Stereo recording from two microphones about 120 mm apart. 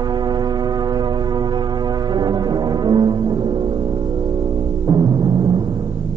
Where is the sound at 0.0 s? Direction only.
35° right (ahead or behind).